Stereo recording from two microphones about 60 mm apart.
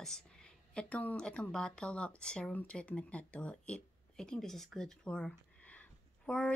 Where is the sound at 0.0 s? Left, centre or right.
Centre.